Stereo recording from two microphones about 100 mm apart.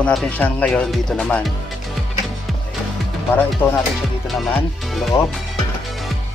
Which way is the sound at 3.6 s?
20° left (ahead or behind).